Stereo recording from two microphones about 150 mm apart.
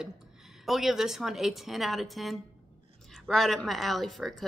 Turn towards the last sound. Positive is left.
turn(degrees=0)  # may be behind; listen again after turning